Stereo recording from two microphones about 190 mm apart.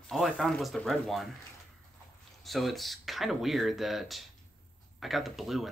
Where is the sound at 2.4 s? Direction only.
Centre (ahead or behind).